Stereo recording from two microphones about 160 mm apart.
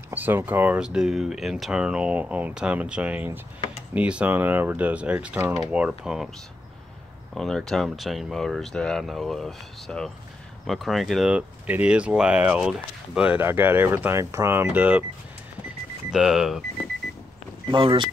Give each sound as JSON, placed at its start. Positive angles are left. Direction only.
{"t": 0.1, "sound": "speech", "side_deg": -10}
{"t": 7.3, "sound": "speech", "side_deg": 0}
{"t": 16.1, "sound": "speech", "side_deg": -5}
{"t": 17.6, "sound": "speech", "side_deg": -30}